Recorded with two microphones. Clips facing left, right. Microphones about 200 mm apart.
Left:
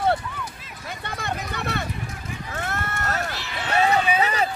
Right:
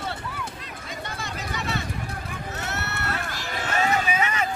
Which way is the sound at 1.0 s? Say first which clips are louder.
Left 5 dB; 60° left (ahead or behind).